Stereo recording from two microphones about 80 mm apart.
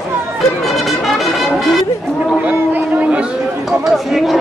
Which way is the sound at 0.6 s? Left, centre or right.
Centre.